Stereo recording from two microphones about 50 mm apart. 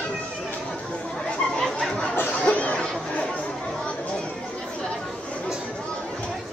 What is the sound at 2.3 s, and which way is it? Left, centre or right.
Chatter, left.